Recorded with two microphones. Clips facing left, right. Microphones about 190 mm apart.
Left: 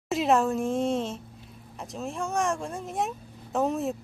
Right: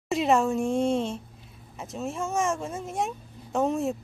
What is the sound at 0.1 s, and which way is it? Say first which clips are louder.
Speech: right 1 dB; centre (ahead or behind).